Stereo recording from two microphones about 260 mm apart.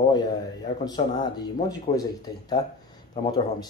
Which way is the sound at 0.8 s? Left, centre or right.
Centre.